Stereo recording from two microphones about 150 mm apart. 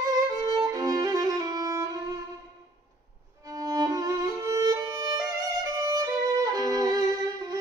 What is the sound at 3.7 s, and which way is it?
Violin, 25° right (ahead or behind).